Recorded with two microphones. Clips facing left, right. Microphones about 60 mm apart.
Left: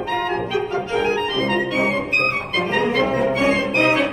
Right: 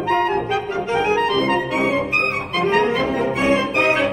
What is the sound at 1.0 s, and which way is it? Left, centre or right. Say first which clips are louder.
Music: right 3 dB; centre.